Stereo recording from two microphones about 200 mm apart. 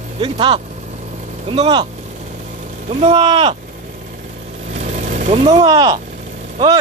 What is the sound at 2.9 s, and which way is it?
Speech, 30° right (ahead or behind).